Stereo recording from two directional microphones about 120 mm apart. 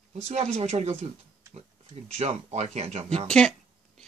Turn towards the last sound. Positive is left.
turn(degrees=-65)  # may be behind; listen again after turning